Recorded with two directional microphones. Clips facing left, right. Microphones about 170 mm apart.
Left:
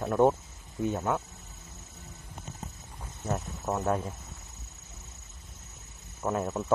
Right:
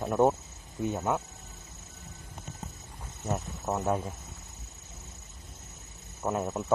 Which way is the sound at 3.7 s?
10° right (ahead or behind).